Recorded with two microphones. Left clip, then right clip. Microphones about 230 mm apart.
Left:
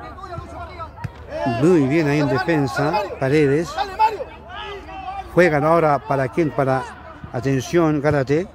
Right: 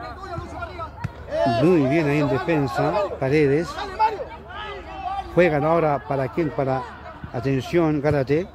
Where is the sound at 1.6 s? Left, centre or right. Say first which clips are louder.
Left 2 dB; centre.